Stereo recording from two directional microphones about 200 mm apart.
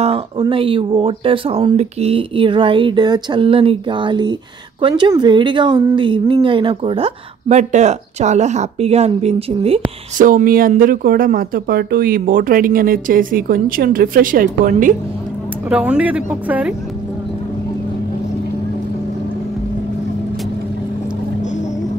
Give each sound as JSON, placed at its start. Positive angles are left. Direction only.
{"t": 0.0, "sound": "a woman's voice", "side_deg": -30}
{"t": 10.2, "sound": "speech", "side_deg": -45}
{"t": 15.7, "sound": "speech", "side_deg": -5}